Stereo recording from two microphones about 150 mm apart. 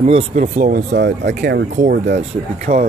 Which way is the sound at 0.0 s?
40° right (ahead or behind).